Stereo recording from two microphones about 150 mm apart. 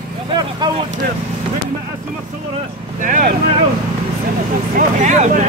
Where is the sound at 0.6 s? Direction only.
30° right (ahead or behind).